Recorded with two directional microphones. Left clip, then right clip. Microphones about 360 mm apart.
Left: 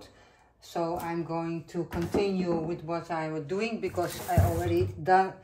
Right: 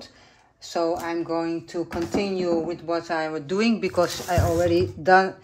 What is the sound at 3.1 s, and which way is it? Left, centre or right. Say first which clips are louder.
Speech: right 6 dB; centre.